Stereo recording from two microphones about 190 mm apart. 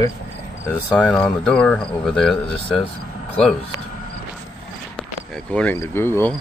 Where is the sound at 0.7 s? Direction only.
5° left (ahead or behind).